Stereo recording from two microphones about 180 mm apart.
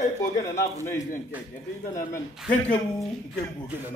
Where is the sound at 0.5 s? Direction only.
45° left (ahead or behind).